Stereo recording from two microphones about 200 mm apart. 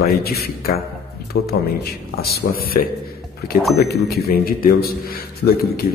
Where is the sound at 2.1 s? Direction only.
50° left (ahead or behind).